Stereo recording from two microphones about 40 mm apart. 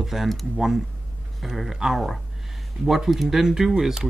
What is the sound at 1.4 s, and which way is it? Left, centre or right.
Speech, centre.